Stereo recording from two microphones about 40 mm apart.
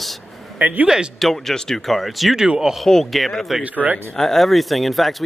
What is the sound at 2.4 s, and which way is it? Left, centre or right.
Speech, centre.